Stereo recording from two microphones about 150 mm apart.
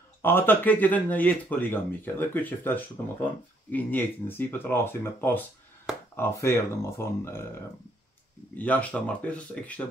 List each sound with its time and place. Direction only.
0.2 s speech: 15° left (ahead or behind)
6.1 s speech: 15° left (ahead or behind)